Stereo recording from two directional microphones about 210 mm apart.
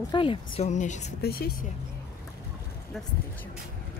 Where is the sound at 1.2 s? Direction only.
45° left (ahead or behind).